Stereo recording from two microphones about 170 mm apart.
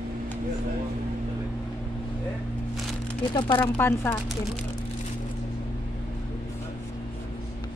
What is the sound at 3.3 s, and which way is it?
Speech, 25° left (ahead or behind).